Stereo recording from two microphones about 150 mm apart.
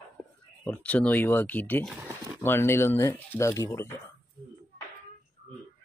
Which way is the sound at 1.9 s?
10° right (ahead or behind).